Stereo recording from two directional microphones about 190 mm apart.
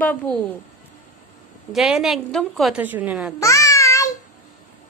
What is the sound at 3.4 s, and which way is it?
Babbling, 15° left (ahead or behind).